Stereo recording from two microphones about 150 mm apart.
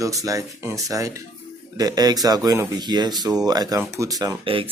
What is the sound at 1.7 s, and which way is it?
Speech, 25° right (ahead or behind).